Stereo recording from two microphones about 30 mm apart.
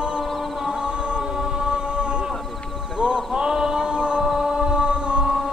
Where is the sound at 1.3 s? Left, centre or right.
Right.